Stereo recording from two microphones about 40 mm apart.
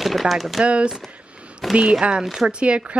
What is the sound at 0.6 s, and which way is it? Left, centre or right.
A woman's voice, right.